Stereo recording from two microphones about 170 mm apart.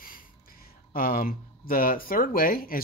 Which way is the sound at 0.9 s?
60° left (ahead or behind).